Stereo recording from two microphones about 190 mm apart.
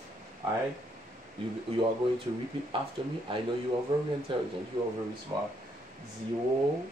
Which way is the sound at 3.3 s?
30° right (ahead or behind).